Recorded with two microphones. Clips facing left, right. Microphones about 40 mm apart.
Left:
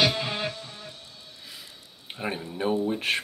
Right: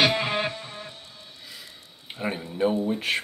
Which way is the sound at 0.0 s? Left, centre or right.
Right.